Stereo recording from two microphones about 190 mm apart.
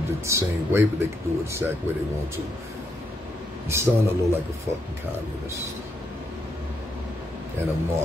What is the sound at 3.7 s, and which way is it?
Speech, 15° right (ahead or behind).